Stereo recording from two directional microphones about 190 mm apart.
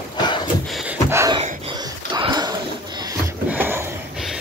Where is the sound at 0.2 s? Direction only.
20° left (ahead or behind).